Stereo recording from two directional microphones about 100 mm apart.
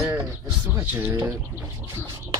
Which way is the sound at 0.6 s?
20° right (ahead or behind).